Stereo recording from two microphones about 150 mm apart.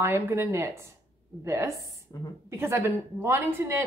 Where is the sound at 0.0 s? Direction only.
15° right (ahead or behind).